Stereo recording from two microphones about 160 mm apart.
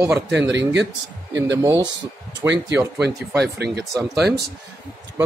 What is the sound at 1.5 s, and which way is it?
Speech, 25° right (ahead or behind).